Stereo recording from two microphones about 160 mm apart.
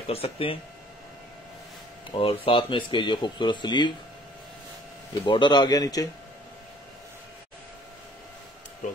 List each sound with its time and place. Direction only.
0.0 s speech: 40° left (ahead or behind)
2.1 s speech: 35° left (ahead or behind)
5.2 s a man's voice: 30° left (ahead or behind)